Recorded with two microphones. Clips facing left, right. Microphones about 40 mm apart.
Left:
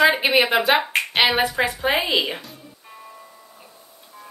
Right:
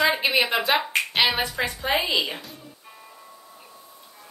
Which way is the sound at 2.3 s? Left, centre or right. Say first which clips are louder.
Left 3 dB; centre.